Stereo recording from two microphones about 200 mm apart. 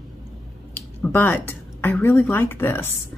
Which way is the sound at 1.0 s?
10° left (ahead or behind).